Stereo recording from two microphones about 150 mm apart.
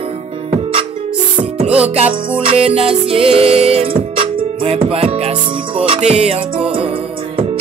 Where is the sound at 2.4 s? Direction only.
40° right (ahead or behind).